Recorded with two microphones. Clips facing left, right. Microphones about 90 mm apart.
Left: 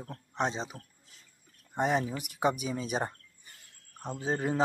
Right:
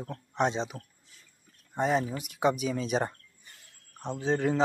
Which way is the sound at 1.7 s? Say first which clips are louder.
Right 1 dB; 15° left (ahead or behind).